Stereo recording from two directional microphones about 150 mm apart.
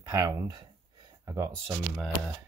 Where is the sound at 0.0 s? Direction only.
20° right (ahead or behind).